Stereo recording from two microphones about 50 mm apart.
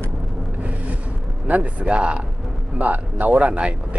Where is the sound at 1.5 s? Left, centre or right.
Right.